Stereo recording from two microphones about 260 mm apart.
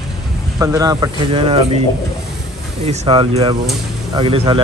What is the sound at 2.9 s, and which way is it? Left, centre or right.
Speech, right.